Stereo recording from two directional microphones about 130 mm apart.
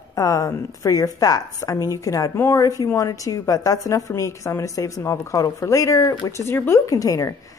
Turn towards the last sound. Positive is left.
turn(degrees=25)  # may be behind; listen again after turning